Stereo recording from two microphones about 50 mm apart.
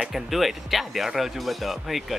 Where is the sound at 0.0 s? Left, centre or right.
Centre.